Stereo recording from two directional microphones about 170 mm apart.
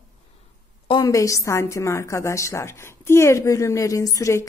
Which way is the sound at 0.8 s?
25° left (ahead or behind).